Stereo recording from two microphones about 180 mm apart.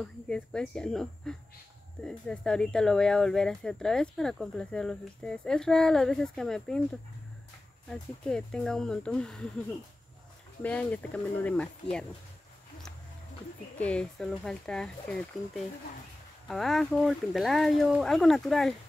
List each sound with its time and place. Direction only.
0.0 s speech: 5° left (ahead or behind)
10.6 s speech: 10° left (ahead or behind)
13.7 s speech: 5° left (ahead or behind)